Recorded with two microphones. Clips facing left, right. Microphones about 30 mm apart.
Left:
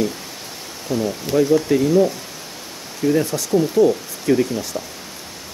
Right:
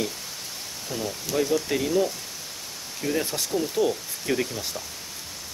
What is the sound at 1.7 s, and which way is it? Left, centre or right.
Speech, centre.